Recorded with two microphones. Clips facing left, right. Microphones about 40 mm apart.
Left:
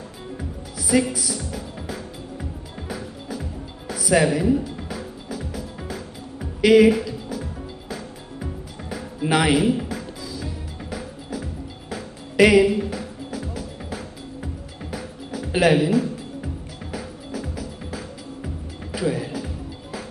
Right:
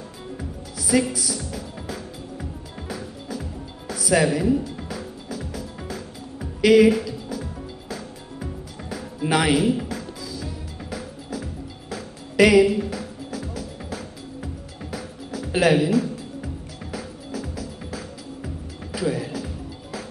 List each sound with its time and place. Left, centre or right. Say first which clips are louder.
0.4 s music: left 1 dB; centre